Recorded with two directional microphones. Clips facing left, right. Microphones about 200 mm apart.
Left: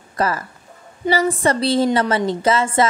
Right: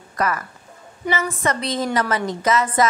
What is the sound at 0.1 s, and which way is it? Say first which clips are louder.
A woman's voice: left 2 dB; 30° left (ahead or behind).